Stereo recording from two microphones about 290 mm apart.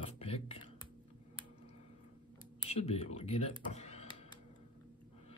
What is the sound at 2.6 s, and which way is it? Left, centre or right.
Speech, centre.